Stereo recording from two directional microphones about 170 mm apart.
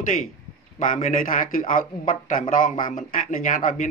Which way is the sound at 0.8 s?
45° left (ahead or behind).